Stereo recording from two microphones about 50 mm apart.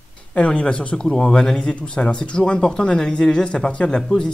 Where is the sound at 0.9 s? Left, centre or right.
Centre.